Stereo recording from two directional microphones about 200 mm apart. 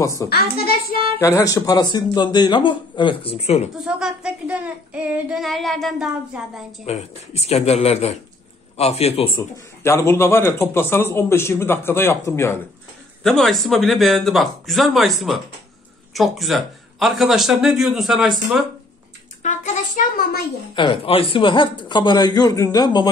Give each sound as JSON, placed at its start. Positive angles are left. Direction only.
{"t": 0.3, "sound": "a child's voice", "side_deg": 50}
{"t": 1.2, "sound": "speech", "side_deg": 15}
{"t": 3.7, "sound": "child singing", "side_deg": -5}
{"t": 6.9, "sound": "speech", "side_deg": 30}
{"t": 9.4, "sound": "a man's voice", "side_deg": 15}
{"t": 13.2, "sound": "child singing", "side_deg": 0}
{"t": 19.4, "sound": "a woman's voice", "side_deg": 35}
{"t": 20.7, "sound": "speech", "side_deg": 25}